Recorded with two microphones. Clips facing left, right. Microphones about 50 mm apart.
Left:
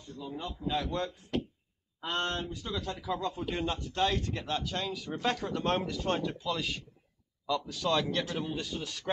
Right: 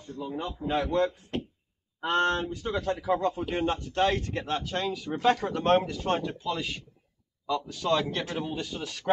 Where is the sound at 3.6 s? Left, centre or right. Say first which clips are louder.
Right 5 dB; right.